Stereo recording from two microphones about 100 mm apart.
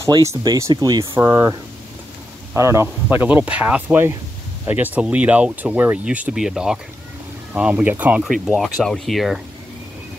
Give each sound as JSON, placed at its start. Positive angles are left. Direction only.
{"t": 0.0, "sound": "speech", "side_deg": -30}
{"t": 8.2, "sound": "speech", "side_deg": -5}